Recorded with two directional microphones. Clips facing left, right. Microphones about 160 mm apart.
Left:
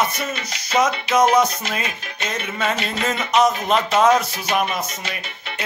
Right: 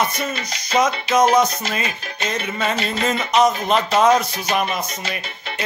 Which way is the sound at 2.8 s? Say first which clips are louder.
Right 2 dB; 35° right (ahead or behind).